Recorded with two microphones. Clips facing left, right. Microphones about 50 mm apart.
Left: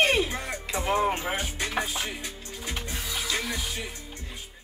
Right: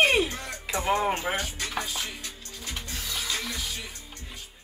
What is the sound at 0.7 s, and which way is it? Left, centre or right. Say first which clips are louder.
Music: even; centre.